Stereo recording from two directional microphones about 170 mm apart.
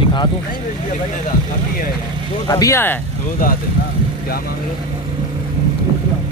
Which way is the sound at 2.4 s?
20° left (ahead or behind).